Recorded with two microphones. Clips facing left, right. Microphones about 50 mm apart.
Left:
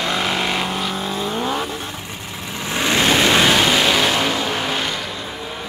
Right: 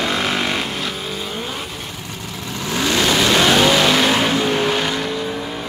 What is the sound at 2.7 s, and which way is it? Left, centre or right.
Vehicle, left.